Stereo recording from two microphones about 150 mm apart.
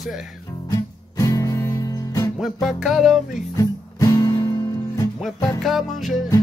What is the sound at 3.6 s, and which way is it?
Music, 20° left (ahead or behind).